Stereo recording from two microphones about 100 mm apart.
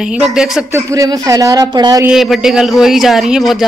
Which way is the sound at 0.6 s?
30° right (ahead or behind).